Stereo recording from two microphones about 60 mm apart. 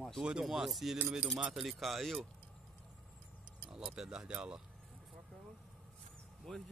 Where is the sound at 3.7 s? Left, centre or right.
Centre.